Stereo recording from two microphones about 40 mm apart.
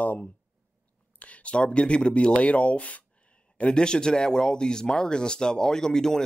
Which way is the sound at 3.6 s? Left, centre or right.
Left.